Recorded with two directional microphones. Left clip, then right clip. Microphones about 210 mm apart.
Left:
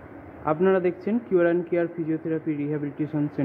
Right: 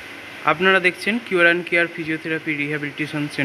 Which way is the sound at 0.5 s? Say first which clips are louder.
Right 6 dB; 5° right (ahead or behind).